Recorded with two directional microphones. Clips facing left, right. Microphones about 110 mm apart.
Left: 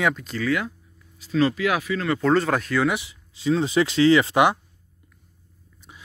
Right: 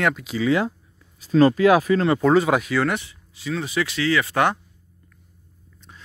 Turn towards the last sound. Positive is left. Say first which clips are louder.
# left 3 dB
turn(degrees=15)  # may be behind; listen again after turning